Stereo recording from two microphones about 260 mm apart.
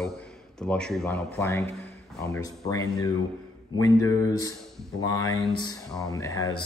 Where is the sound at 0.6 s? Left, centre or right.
Centre.